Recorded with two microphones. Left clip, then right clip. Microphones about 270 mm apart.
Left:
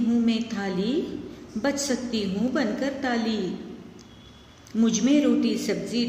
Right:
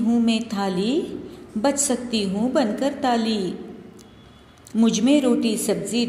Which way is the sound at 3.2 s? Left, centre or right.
Centre.